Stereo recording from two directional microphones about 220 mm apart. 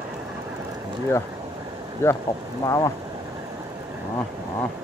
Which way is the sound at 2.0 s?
10° left (ahead or behind).